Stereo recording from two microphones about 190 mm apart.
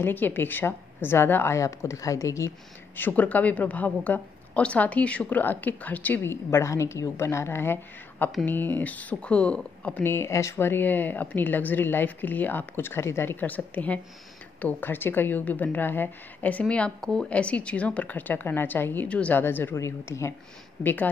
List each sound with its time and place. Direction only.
0.0 s a woman's voice: 10° left (ahead or behind)
8.3 s speech: centre (ahead or behind)
8.5 s a woman's voice: 10° left (ahead or behind)